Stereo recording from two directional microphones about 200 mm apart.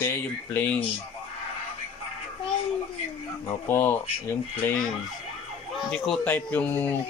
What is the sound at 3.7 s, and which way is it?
Speech, 10° left (ahead or behind).